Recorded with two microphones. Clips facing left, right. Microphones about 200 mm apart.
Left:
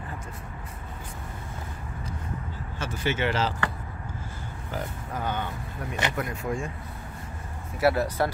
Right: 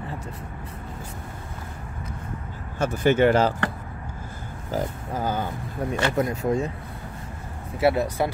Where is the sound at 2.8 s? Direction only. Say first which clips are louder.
Right 9 dB; 45° right (ahead or behind).